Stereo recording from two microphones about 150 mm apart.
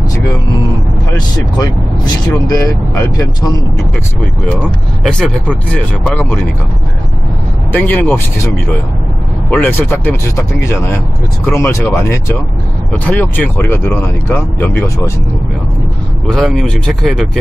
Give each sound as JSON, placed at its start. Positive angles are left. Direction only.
{"t": 1.1, "sound": "speech", "side_deg": 25}
{"t": 5.7, "sound": "speech", "side_deg": 10}
{"t": 7.7, "sound": "speech", "side_deg": 10}
{"t": 16.3, "sound": "speech", "side_deg": 5}